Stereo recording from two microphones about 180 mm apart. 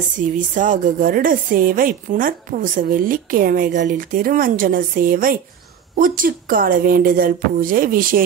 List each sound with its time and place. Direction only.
0.2 s a woman's voice: 45° right (ahead or behind)